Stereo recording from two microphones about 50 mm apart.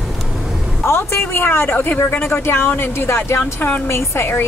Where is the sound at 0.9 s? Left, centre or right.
Left.